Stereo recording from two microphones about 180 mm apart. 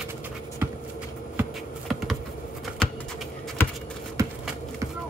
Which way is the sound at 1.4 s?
Centre (ahead or behind).